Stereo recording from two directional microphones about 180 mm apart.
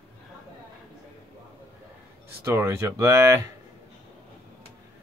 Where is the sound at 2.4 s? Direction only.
15° right (ahead or behind).